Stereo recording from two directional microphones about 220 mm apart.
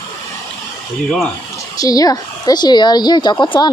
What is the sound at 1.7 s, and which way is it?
A woman's voice, 15° left (ahead or behind).